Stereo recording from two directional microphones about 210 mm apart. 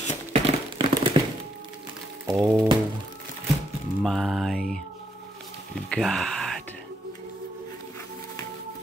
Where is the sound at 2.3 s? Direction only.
15° right (ahead or behind).